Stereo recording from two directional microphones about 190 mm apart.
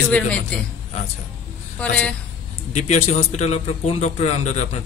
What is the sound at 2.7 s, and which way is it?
Speech, 35° left (ahead or behind).